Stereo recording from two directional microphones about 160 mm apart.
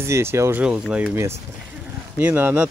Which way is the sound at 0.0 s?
15° right (ahead or behind).